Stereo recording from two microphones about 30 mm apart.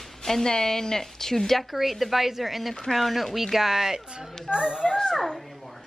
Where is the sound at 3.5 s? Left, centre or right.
Centre.